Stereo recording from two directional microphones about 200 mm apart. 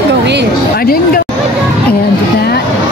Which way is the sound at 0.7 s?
50° left (ahead or behind).